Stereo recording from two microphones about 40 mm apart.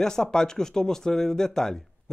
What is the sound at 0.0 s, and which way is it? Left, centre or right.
Speech, centre.